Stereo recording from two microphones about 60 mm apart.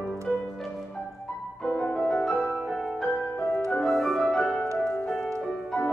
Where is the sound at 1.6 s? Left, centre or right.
Left.